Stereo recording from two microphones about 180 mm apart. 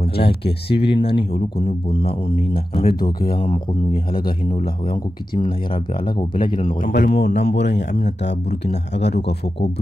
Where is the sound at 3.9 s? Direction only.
55° left (ahead or behind).